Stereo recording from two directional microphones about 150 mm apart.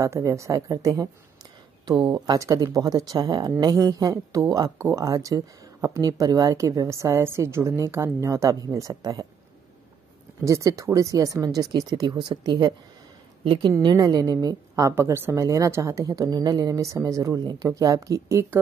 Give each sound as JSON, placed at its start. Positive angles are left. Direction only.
{"t": 0.0, "sound": "a woman's voice", "side_deg": -20}
{"t": 10.4, "sound": "a woman's voice", "side_deg": -20}